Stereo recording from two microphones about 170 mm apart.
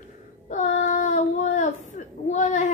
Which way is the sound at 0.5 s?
45° left (ahead or behind).